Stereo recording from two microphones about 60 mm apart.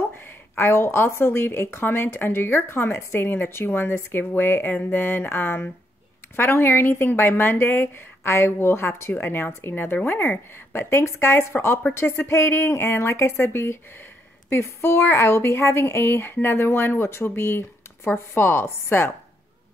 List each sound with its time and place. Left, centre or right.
0.1 s a woman's voice: left